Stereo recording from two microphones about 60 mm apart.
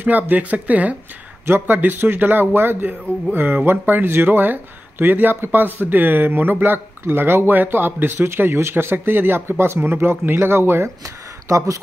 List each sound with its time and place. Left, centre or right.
0.0 s speech: right
1.4 s speech: right
11.4 s speech: right